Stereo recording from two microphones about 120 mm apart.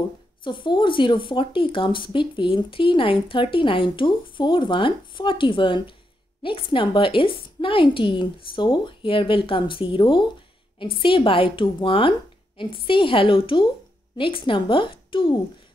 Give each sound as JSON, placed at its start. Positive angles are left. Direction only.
{"t": 0.4, "sound": "speech", "side_deg": 40}